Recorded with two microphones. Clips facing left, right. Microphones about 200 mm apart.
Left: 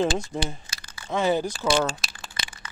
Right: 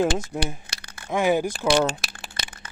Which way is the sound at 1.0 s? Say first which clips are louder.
Right 2 dB; 10° right (ahead or behind).